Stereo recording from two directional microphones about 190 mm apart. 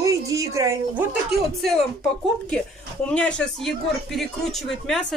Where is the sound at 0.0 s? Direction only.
15° right (ahead or behind).